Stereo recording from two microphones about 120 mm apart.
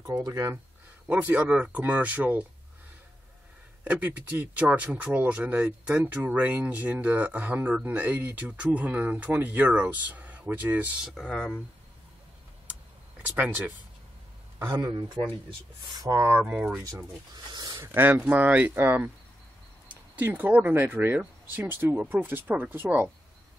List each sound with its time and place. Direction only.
0.0 s speech: 30° right (ahead or behind)
1.0 s speech: 10° right (ahead or behind)
3.8 s speech: 10° right (ahead or behind)
11.1 s speech: 5° left (ahead or behind)
13.2 s speech: 15° right (ahead or behind)
14.6 s speech: 30° right (ahead or behind); by 16.8 s 10° right (ahead or behind)
17.5 s a sound: 35° right (ahead or behind)
17.8 s speech: 15° right (ahead or behind)